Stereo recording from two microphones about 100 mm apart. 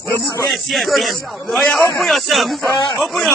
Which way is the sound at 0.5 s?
Centre (ahead or behind).